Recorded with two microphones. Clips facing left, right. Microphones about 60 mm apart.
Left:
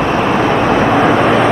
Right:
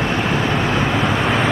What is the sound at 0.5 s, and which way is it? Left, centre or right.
Vehicle, left.